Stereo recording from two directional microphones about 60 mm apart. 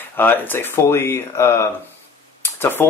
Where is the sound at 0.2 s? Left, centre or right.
Left.